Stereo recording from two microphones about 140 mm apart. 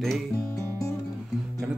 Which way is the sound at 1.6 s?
10° right (ahead or behind).